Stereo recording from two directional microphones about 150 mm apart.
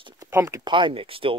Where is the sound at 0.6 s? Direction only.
35° right (ahead or behind).